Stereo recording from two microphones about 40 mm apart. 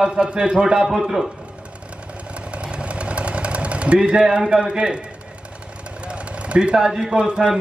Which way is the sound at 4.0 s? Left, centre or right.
Centre.